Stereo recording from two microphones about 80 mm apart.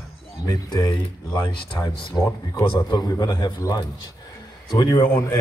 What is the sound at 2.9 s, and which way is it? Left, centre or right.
Speech, left.